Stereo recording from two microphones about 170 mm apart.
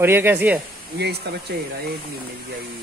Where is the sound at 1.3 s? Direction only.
85° right.